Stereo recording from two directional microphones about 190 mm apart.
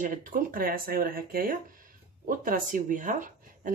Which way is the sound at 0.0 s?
45° right (ahead or behind).